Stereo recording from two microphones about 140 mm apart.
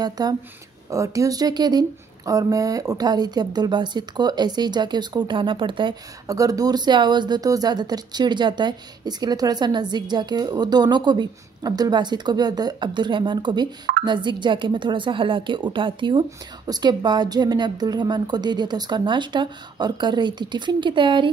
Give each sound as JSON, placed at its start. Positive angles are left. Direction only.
{"t": 0.0, "sound": "a woman's voice", "side_deg": -30}